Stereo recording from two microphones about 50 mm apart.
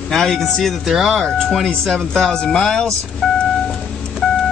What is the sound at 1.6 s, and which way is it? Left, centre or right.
Speech, centre.